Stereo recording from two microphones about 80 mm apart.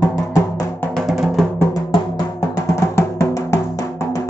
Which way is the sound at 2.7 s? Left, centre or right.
Left.